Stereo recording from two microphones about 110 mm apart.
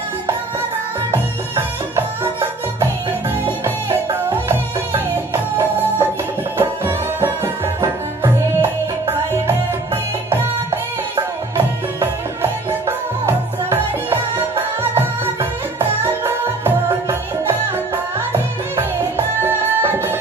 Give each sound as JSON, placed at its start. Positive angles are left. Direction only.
{"t": 1.1, "sound": "music", "side_deg": -25}
{"t": 3.6, "sound": "music", "side_deg": -25}
{"t": 11.5, "sound": "music", "side_deg": -25}